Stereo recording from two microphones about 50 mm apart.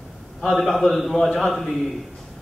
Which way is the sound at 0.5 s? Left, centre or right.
Left.